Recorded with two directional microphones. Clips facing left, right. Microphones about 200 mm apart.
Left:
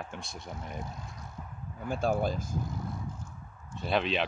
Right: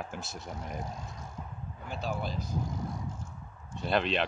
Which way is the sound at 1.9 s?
45° left (ahead or behind).